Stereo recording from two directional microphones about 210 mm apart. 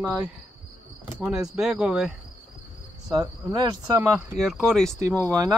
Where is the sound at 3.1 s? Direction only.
20° right (ahead or behind).